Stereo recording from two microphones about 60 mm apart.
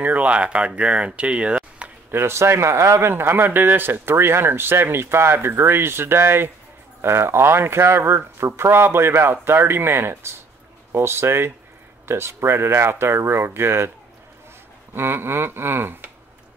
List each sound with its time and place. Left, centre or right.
0.0 s speech: right
2.0 s speech: right
15.0 s speech: right